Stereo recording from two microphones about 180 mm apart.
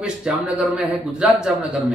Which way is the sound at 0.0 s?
5° right (ahead or behind).